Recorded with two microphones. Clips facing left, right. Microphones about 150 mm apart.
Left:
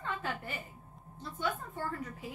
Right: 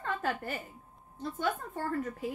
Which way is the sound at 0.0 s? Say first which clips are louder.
Right 4 dB; 45° right (ahead or behind).